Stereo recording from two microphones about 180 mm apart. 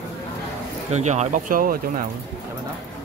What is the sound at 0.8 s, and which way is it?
Speech, 40° right (ahead or behind).